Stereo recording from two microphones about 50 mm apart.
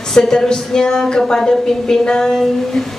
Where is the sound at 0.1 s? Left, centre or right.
Centre.